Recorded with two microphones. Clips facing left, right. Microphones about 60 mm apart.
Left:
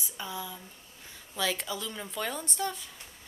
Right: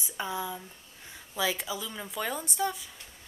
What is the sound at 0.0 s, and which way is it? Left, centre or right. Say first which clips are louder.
Speech: right 5 dB; right.